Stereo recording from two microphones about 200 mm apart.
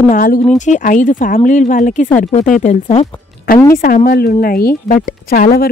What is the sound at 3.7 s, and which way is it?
Speech, 45° left (ahead or behind).